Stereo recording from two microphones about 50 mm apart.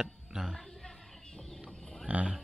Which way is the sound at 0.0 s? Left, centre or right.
Centre.